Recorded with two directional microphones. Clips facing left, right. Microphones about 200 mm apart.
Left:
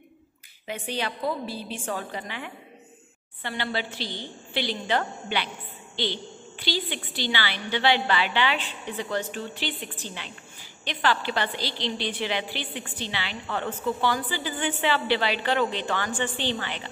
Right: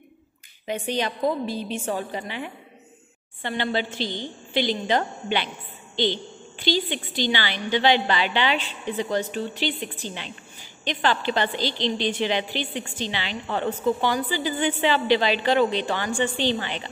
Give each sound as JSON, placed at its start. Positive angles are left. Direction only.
{"t": 0.9, "sound": "a woman's voice", "side_deg": -15}